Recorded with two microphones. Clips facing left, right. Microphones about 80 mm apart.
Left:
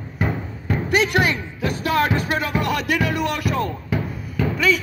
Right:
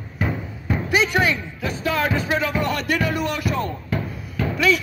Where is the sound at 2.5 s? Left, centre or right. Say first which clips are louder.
Left 1 dB; centre.